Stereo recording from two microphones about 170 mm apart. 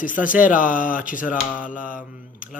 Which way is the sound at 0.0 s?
50° left (ahead or behind).